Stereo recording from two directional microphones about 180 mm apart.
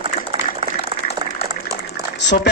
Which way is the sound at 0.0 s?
30° right (ahead or behind).